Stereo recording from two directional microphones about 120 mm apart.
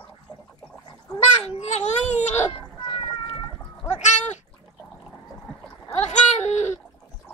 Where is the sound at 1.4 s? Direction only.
65° left (ahead or behind).